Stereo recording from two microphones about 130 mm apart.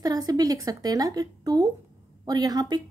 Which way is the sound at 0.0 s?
30° right (ahead or behind).